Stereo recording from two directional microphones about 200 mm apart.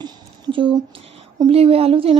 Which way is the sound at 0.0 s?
25° right (ahead or behind).